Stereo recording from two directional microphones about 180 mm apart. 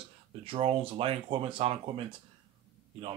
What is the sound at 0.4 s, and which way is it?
Speech, 30° right (ahead or behind).